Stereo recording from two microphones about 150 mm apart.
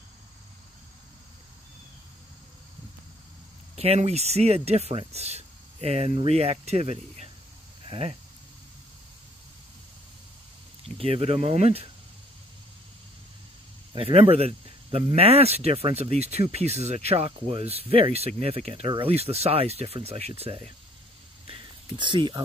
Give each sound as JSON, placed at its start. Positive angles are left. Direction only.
{"t": 3.7, "sound": "speech", "side_deg": -45}
{"t": 11.0, "sound": "speech", "side_deg": -40}
{"t": 13.9, "sound": "speech", "side_deg": -35}